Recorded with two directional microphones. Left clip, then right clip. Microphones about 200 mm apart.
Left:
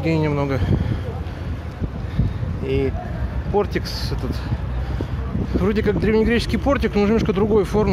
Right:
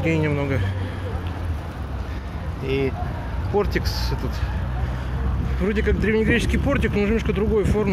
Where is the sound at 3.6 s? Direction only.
25° left (ahead or behind).